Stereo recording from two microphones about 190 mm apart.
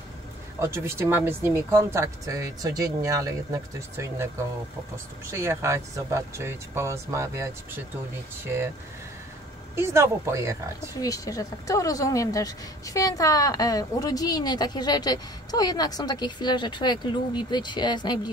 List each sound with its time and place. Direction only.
0.6 s speech: 15° right (ahead or behind)
9.8 s speech: 15° right (ahead or behind)
11.0 s speech: 20° left (ahead or behind)